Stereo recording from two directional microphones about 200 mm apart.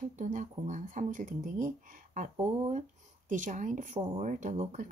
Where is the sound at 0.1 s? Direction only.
40° right (ahead or behind).